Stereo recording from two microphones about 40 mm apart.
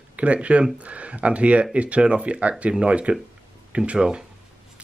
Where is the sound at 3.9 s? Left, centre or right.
Centre.